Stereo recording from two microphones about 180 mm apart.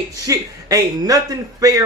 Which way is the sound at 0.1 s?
20° right (ahead or behind).